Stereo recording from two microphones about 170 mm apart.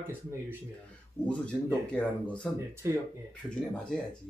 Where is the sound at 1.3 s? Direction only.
5° left (ahead or behind).